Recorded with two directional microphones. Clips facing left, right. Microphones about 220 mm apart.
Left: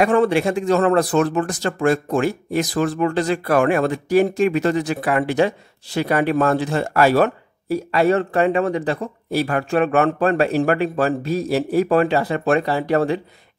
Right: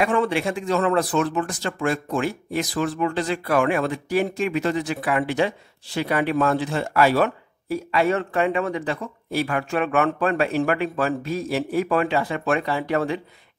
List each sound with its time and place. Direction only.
0.0 s speech: 45° left (ahead or behind)